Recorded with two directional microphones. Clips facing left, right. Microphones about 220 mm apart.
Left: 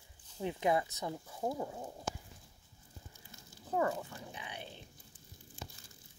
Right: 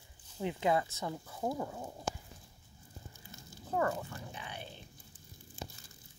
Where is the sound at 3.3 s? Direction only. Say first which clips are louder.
Right 4 dB; 50° right (ahead or behind).